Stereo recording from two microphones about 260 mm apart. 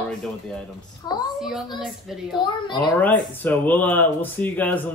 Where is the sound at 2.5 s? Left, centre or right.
Centre.